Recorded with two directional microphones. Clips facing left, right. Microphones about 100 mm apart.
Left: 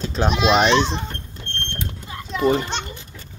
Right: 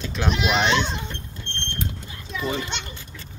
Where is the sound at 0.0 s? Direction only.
35° left (ahead or behind).